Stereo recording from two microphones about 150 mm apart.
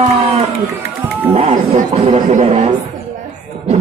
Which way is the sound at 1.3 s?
45° right (ahead or behind).